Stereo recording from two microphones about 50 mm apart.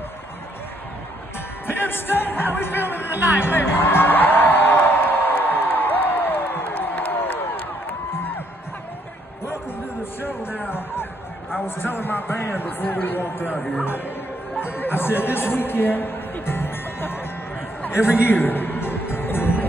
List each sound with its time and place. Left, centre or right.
1.7 s music: left
3.1 s speech: right
3.4 s music: left
11.6 s speech: left
13.6 s speech: centre
14.6 s chatter: left
18.2 s music: left